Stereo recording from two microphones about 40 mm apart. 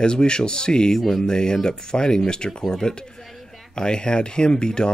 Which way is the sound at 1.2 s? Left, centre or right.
Centre.